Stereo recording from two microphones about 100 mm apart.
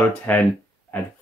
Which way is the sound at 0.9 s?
20° left (ahead or behind).